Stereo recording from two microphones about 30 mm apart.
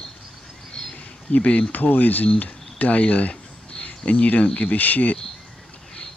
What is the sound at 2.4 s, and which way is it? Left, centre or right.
Speech, left.